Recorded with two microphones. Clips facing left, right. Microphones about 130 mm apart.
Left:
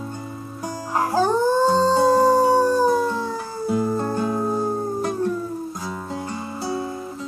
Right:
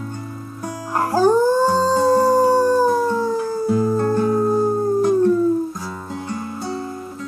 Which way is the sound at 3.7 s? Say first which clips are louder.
Right 3 dB; 15° left (ahead or behind).